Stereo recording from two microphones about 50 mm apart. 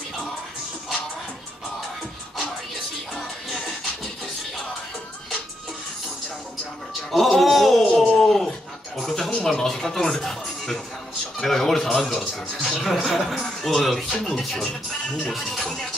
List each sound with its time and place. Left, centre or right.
3.5 s music: centre
7.1 s music: centre
7.8 s a sound: centre
11.3 s a man's voice: centre